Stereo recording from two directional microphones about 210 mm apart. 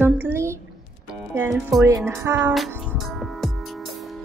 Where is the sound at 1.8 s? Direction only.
15° right (ahead or behind).